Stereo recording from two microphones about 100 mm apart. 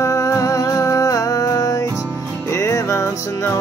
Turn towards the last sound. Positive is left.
turn(degrees=30)  # may be behind; listen again after turning